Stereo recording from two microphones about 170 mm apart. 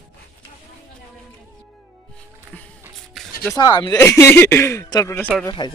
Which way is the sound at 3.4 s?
20° left (ahead or behind).